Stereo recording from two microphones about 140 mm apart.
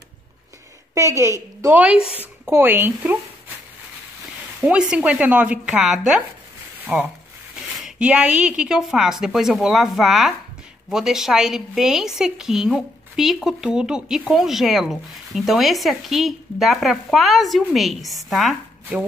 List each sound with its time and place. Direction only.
0.9 s a woman's voice: 20° right (ahead or behind)
1.8 s speech: 10° right (ahead or behind)
4.6 s speech: 5° right (ahead or behind)
6.8 s a sound: 15° right (ahead or behind)
7.5 s speech: 5° right (ahead or behind)